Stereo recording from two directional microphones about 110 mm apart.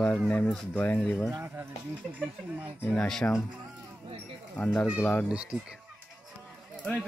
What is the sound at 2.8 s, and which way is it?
Speech, 10° left (ahead or behind).